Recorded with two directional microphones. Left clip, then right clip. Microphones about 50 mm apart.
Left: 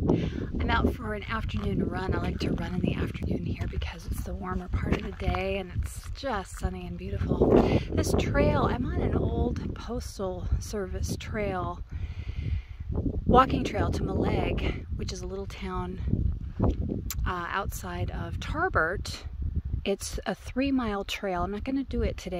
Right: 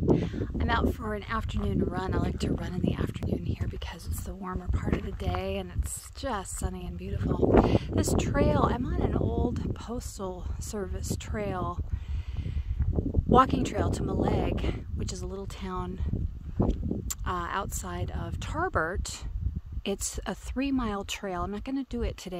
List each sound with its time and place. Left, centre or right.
0.0 s speech: right
13.3 s speech: right
17.2 s speech: right
19.8 s speech: right